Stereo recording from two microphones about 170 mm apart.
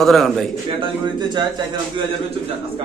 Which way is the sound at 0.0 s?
Centre (ahead or behind).